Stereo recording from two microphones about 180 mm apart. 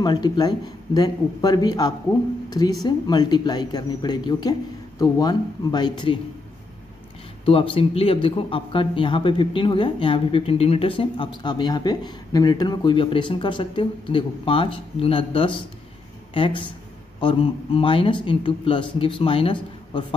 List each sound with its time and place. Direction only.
0.0 s a man's voice: 25° left (ahead or behind)
7.4 s a man's voice: 30° left (ahead or behind)